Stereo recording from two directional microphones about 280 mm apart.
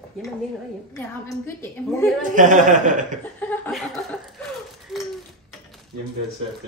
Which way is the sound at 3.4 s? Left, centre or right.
Centre.